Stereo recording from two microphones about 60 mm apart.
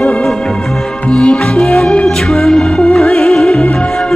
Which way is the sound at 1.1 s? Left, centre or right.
Centre.